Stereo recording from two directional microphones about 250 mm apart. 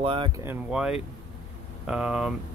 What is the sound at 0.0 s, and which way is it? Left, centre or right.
Speech, right.